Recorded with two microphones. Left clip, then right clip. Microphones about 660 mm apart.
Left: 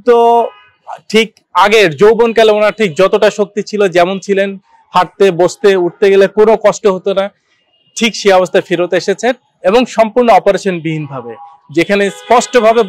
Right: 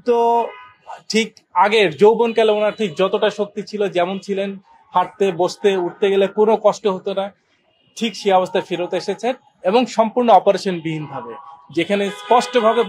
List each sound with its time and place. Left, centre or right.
0.0 s a man's voice: left